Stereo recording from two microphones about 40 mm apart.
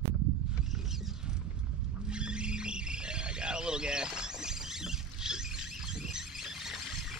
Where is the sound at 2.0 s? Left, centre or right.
Right.